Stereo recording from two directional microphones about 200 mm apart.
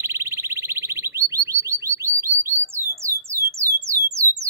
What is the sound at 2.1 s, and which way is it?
Alarm, 15° right (ahead or behind).